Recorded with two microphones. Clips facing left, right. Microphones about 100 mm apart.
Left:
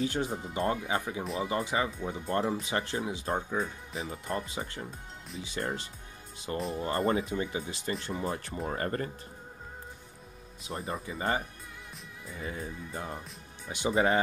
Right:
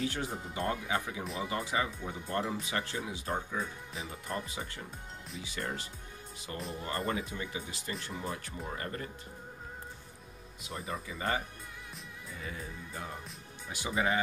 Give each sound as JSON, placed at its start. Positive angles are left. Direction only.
{"t": 0.0, "sound": "speech", "side_deg": 25}
{"t": 1.2, "sound": "speech", "side_deg": 0}
{"t": 1.5, "sound": "speech", "side_deg": 25}
{"t": 3.9, "sound": "speech", "side_deg": 0}
{"t": 4.3, "sound": "speech", "side_deg": 30}
{"t": 10.7, "sound": "speech", "side_deg": 35}
{"t": 13.7, "sound": "speech", "side_deg": 25}
{"t": 13.9, "sound": "speech", "side_deg": 40}